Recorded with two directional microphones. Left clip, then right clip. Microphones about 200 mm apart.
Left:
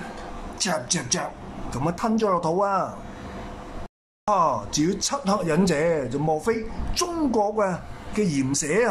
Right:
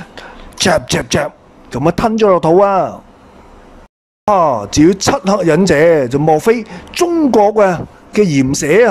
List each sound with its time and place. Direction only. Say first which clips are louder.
0.6 s speech: right 13 dB; 40° right (ahead or behind)
4.3 s speech: right 10 dB; 35° right (ahead or behind)